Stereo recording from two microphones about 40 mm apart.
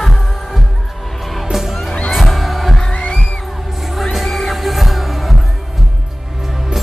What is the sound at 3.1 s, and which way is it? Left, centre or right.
Music, centre.